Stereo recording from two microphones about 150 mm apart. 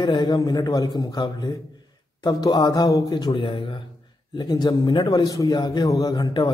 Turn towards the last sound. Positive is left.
turn(degrees=30)  # may be behind; listen again after turning